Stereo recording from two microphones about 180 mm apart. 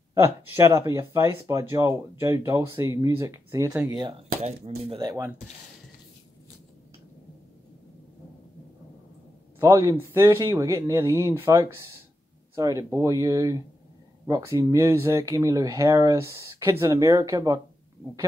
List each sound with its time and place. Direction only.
0.1 s speech: 15° right (ahead or behind)
4.6 s speech: 35° right (ahead or behind)
5.0 s speech: 20° right (ahead or behind)
9.6 s speech: 15° right (ahead or behind)